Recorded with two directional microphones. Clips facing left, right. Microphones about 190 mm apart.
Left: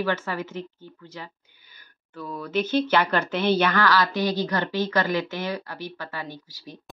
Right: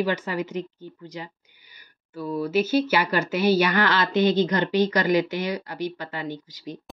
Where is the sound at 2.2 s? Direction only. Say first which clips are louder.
Right 7 dB; 30° right (ahead or behind).